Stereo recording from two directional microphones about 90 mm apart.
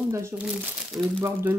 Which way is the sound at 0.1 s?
30° right (ahead or behind).